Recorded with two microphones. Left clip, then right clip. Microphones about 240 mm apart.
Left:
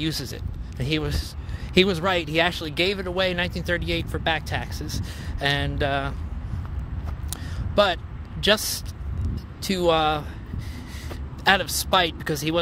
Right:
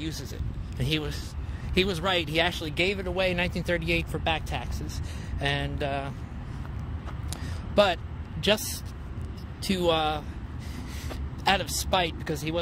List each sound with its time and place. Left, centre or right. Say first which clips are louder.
0.0 s speech: left 8 dB; left
0.7 s speech: left 3 dB; centre
1.7 s speech: left 5 dB; left; by 4.2 s centre
4.2 s speech: left 4 dB; centre
7.2 s a sound: left 4 dB; centre
9.6 s speech: left 4 dB; centre